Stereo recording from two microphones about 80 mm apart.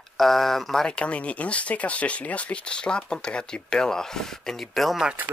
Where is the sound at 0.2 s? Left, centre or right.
Centre.